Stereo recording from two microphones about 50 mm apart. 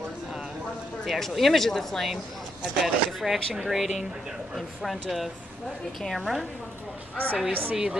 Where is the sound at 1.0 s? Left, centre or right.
Centre.